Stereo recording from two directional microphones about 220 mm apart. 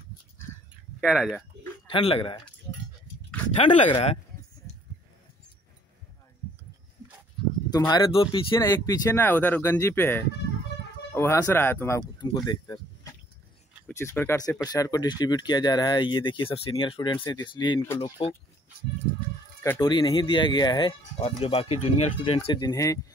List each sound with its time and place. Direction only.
1.0 s speech: 5° right (ahead or behind)
1.9 s speech: 25° left (ahead or behind)
3.5 s speech: 25° left (ahead or behind)
7.9 s speech: 25° left (ahead or behind)
12.2 s speech: 20° left (ahead or behind)
13.8 s speech: 10° left (ahead or behind)
19.6 s speech: 15° left (ahead or behind)